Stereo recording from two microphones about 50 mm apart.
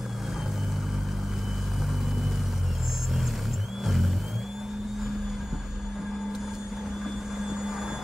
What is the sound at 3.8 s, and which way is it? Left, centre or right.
Music, centre.